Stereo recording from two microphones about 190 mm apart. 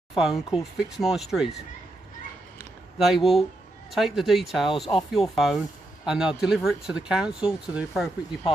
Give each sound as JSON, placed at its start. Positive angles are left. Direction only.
{"t": 0.1, "sound": "speech", "side_deg": 0}
{"t": 3.0, "sound": "speech", "side_deg": 0}